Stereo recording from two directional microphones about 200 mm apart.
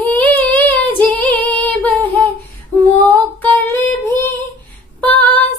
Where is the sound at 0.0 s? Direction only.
10° left (ahead or behind).